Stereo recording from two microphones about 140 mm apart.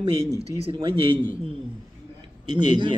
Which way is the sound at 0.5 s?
40° right (ahead or behind).